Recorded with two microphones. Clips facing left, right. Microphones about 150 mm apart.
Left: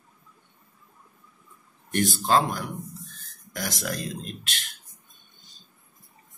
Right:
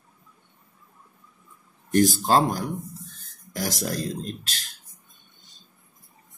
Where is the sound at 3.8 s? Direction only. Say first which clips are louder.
Right 3 dB; 40° right (ahead or behind).